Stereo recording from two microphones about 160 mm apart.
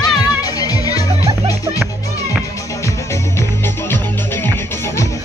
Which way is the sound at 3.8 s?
15° left (ahead or behind).